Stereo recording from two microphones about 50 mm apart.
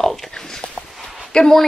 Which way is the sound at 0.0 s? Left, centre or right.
Centre.